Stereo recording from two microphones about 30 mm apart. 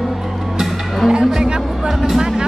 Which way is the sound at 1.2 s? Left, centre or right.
Centre.